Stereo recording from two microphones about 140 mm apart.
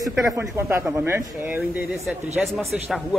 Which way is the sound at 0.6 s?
20° right (ahead or behind).